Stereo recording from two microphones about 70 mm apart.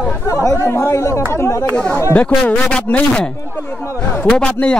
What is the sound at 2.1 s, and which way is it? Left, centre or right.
Speech, left.